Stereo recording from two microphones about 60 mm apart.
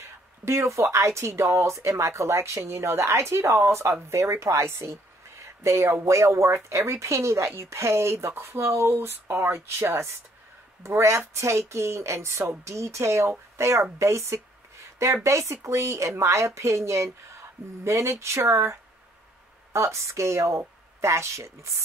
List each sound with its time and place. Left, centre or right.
0.5 s a woman's voice: right
5.4 s a sound: right
6.0 s a woman's voice: right